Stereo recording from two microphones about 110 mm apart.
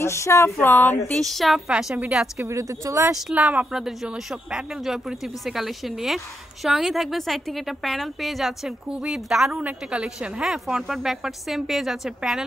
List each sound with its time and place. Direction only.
0.0 s a sound: 25° left (ahead or behind)
1.1 s speech: centre (ahead or behind)
2.4 s speech: 30° right (ahead or behind)
3.3 s speech: 10° right (ahead or behind)